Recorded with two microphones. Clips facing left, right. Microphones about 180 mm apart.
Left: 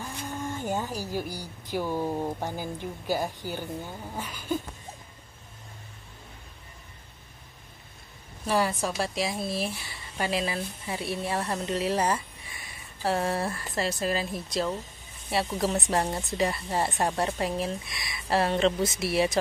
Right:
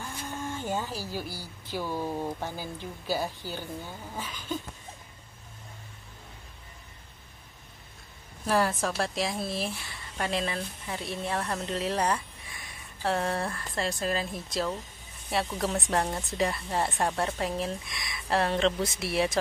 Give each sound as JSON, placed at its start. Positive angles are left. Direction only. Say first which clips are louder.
{"t": 0.7, "sound": "speech", "louder": "left 2 dB", "side_deg": 15}
{"t": 8.5, "sound": "a woman's voice", "louder": "even", "side_deg": 0}